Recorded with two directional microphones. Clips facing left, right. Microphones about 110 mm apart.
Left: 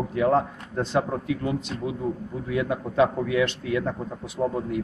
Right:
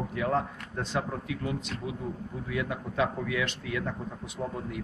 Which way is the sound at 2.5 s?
30° left (ahead or behind).